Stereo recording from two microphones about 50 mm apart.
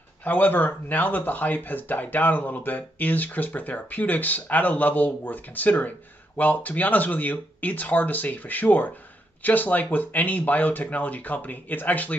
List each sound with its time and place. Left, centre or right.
0.2 s speech: left